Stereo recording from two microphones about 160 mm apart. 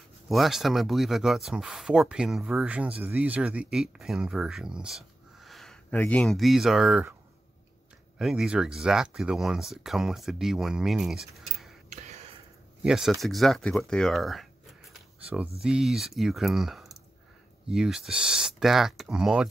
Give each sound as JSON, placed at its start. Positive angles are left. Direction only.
{"t": 0.3, "sound": "speech", "side_deg": 0}
{"t": 8.2, "sound": "speech", "side_deg": -5}
{"t": 11.9, "sound": "a sound", "side_deg": -45}
{"t": 12.8, "sound": "speech", "side_deg": -5}